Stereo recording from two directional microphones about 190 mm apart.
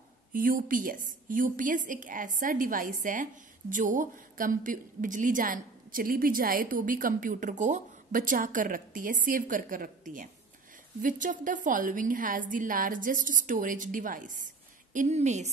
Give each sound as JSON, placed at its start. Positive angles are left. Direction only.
{"t": 0.3, "sound": "a woman's voice", "side_deg": -50}